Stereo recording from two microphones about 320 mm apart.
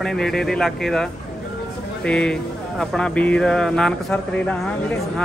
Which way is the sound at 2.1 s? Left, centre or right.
Centre.